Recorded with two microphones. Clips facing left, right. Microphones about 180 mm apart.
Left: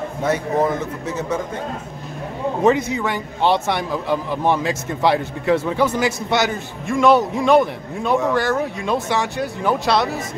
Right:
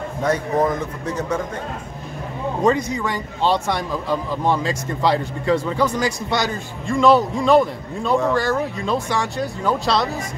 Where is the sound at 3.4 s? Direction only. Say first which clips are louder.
Left 2 dB; 25° left (ahead or behind).